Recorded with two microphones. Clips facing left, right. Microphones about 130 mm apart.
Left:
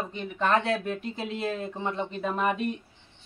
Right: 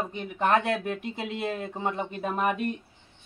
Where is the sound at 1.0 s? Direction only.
15° right (ahead or behind).